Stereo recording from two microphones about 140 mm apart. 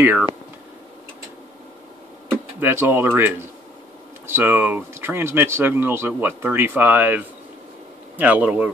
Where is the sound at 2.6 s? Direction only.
15° right (ahead or behind).